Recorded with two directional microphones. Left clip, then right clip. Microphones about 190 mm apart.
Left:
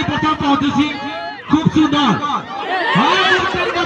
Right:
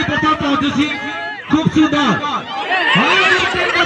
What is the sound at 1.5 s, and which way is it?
Speech, 45° left (ahead or behind).